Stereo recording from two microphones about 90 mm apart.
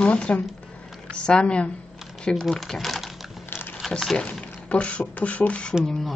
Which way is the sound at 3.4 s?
25° left (ahead or behind).